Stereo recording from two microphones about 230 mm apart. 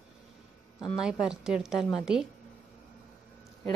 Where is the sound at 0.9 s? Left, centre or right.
Centre.